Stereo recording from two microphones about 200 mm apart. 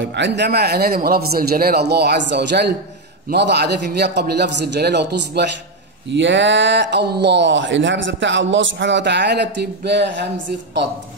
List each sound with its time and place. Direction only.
0.0 s a man's voice: 60° right (ahead or behind)